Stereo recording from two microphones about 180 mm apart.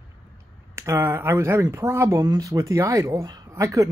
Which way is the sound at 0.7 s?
15° right (ahead or behind).